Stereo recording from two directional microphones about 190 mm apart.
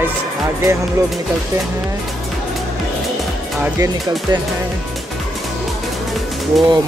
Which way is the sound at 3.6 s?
15° right (ahead or behind).